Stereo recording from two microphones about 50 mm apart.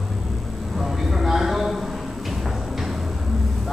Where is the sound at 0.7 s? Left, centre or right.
Centre.